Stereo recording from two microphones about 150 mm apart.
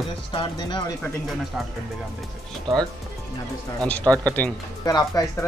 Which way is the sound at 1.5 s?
5° right (ahead or behind).